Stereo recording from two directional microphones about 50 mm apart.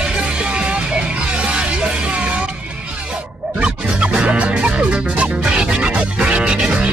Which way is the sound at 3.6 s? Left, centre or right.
Right.